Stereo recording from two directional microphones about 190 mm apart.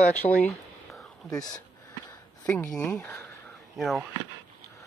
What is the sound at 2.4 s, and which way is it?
Speech, 5° left (ahead or behind).